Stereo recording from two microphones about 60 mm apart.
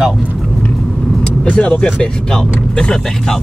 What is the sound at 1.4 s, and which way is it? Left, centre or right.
Speech, centre.